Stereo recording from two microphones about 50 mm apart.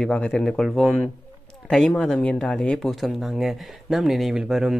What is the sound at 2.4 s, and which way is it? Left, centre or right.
Speech, centre.